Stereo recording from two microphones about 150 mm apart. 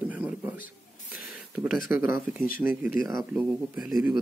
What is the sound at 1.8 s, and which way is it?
Speech, 15° right (ahead or behind).